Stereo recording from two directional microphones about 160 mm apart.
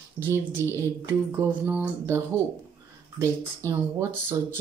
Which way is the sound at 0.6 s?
15° left (ahead or behind).